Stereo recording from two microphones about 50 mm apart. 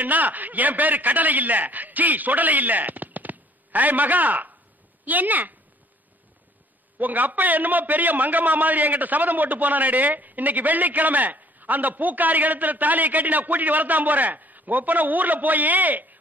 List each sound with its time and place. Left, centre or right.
0.0 s a man's voice: right
7.0 s a man's voice: right